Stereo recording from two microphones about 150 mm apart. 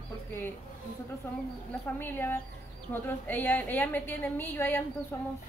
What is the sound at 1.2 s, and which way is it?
Speech, 15° left (ahead or behind).